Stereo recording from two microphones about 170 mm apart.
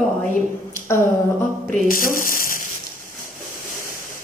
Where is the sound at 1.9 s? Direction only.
55° left (ahead or behind).